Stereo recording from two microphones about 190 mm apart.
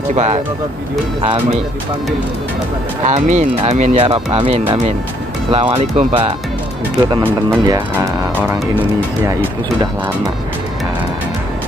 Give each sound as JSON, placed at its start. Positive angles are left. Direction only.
{"t": 0.1, "sound": "speech", "side_deg": -35}
{"t": 3.1, "sound": "speech", "side_deg": -40}
{"t": 7.2, "sound": "speech", "side_deg": -20}
{"t": 8.4, "sound": "speech", "side_deg": -10}